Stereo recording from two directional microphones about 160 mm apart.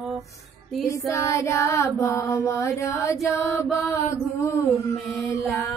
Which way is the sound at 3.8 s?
20° left (ahead or behind).